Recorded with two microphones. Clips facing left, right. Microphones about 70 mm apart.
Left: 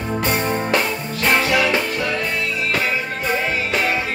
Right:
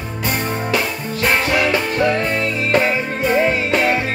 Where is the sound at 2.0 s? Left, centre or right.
Right.